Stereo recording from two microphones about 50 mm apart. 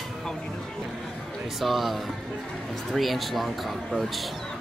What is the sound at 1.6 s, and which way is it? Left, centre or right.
Speech, centre.